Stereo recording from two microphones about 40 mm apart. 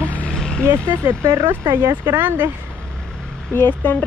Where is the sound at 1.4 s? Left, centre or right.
Right.